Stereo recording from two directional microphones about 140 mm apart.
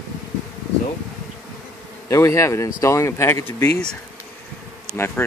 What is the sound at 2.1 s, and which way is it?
Speech, 20° left (ahead or behind).